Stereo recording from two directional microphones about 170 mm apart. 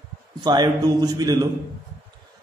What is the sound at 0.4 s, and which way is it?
A man's voice, 25° right (ahead or behind).